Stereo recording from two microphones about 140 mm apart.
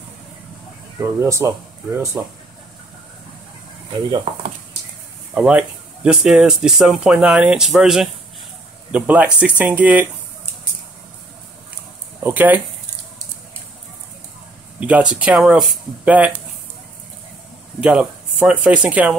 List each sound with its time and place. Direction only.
0.9 s speech: 20° right (ahead or behind)
4.3 s speech: 35° right (ahead or behind)
5.3 s speech: 5° right (ahead or behind)
12.2 s speech: 15° right (ahead or behind)
14.8 s speech: 10° right (ahead or behind)
17.7 s speech: 5° right (ahead or behind)